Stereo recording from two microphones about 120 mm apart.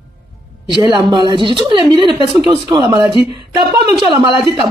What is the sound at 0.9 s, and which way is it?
A woman's voice, 40° right (ahead or behind).